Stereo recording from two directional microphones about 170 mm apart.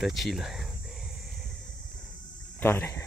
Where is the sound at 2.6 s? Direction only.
15° left (ahead or behind).